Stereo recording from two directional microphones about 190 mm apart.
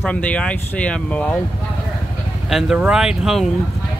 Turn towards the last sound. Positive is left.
turn(degrees=-5)  # may be behind; listen again after turning